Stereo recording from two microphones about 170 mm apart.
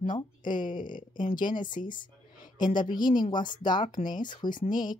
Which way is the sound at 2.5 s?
25° left (ahead or behind).